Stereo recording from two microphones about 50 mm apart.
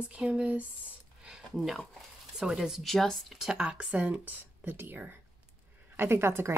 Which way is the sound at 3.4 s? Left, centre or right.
Centre.